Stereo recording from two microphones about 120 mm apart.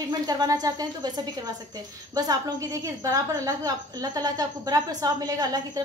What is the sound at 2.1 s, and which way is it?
A woman's voice, 30° right (ahead or behind).